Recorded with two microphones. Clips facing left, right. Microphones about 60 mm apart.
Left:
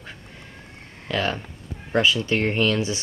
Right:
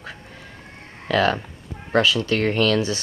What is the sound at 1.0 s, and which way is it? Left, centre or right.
Speech, centre.